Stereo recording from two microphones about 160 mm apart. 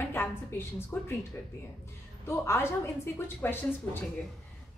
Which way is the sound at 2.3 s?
15° left (ahead or behind).